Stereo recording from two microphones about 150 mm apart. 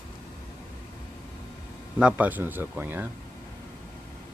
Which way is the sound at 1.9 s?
10° right (ahead or behind).